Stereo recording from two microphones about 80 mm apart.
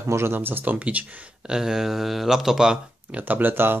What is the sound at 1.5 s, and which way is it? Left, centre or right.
Speech, centre.